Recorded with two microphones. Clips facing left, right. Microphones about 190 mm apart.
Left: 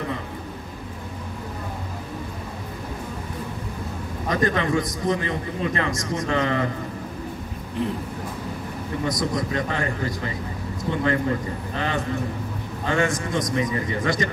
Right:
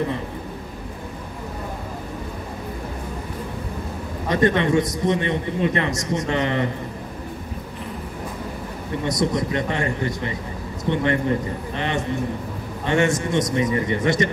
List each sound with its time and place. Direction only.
4.3 s a man's voice: 25° right (ahead or behind)
9.0 s a man's voice: 25° right (ahead or behind)
12.8 s a man's voice: 25° right (ahead or behind)